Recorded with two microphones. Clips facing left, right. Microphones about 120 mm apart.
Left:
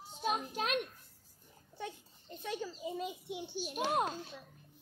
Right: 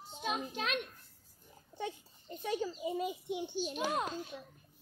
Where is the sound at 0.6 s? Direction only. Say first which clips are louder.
Left 2 dB; 45° left (ahead or behind).